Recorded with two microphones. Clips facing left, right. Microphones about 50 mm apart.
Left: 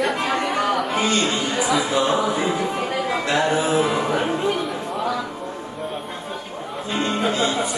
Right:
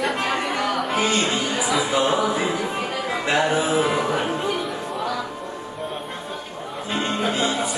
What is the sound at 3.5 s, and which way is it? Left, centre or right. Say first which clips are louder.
Music: left 1 dB; centre.